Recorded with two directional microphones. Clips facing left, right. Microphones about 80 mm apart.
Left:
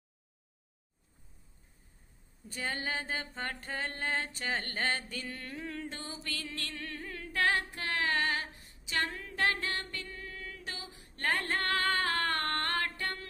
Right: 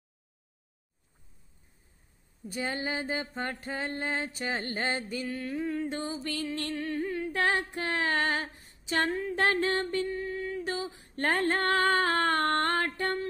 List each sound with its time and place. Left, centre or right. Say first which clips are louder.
2.4 s mantra: right 4 dB; centre
5.2 s music: right 9 dB; centre
5.9 s music: right 8 dB; right
6.9 s humming: right 11 dB; centre
7.3 s female singing: even; right
12.5 s music: right 6 dB; right